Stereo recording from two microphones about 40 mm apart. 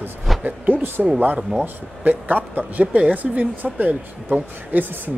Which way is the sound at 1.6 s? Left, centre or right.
Right.